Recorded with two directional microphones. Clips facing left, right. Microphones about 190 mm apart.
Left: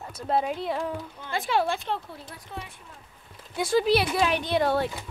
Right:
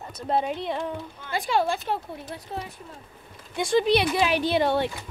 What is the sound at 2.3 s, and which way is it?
Speech, 35° right (ahead or behind).